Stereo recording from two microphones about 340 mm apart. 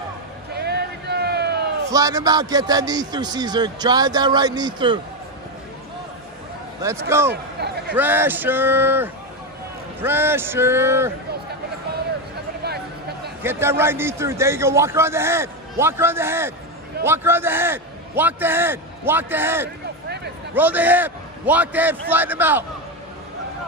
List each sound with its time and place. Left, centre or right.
0.5 s a sound: right
1.9 s a man's voice: centre
6.8 s a man's voice: centre
7.6 s a man's voice: right
7.9 s a man's voice: centre
12.6 s a sound: right
13.4 s a man's voice: centre